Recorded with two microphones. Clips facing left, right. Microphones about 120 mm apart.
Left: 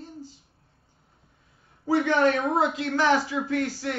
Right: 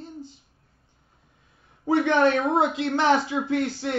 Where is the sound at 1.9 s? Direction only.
25° right (ahead or behind).